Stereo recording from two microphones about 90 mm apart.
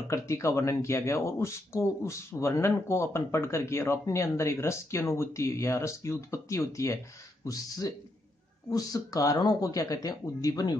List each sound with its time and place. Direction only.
0.1 s speech: 35° left (ahead or behind); by 10.8 s 50° left (ahead or behind)